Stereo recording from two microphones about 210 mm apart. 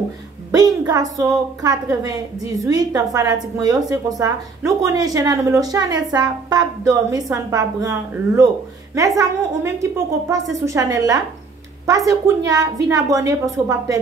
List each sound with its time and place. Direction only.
0.5 s speech: 15° right (ahead or behind)